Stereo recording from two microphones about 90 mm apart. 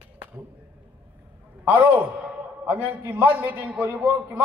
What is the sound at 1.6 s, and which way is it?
A man's voice, 20° right (ahead or behind).